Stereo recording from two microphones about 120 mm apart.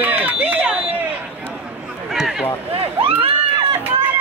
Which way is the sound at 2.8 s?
50° right (ahead or behind).